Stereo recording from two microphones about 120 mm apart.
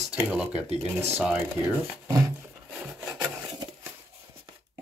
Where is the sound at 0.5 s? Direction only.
60° right (ahead or behind).